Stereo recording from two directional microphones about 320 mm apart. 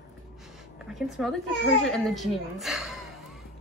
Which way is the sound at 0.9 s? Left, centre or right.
Centre.